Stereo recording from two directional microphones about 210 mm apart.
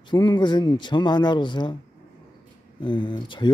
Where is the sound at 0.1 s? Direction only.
20° left (ahead or behind).